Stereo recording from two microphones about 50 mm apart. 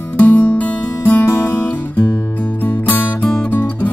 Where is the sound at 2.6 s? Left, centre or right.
Left.